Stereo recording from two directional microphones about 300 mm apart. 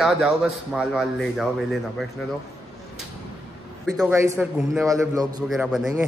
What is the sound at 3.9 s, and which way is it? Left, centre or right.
A man's voice, centre.